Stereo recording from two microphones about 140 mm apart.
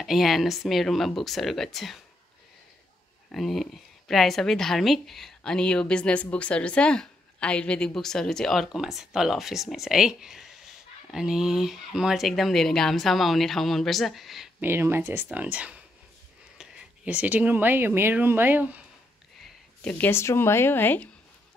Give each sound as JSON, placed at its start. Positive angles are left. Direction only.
{"t": 0.0, "sound": "speech", "side_deg": 0}
{"t": 3.3, "sound": "speech", "side_deg": 0}
{"t": 14.6, "sound": "speech", "side_deg": -15}
{"t": 19.8, "sound": "speech", "side_deg": 10}